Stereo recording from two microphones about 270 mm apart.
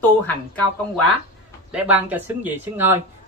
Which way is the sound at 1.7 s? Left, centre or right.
Centre.